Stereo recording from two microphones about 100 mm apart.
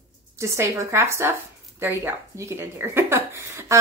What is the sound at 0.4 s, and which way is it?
A woman's voice, 30° right (ahead or behind).